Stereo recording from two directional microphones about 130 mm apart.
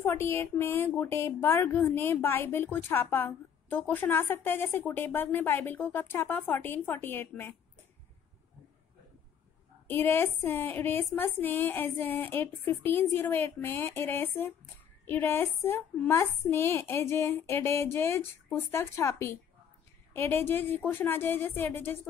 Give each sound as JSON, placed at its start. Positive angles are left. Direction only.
{"t": 0.0, "sound": "a woman's voice", "side_deg": 15}
{"t": 9.8, "sound": "a woman's voice", "side_deg": 15}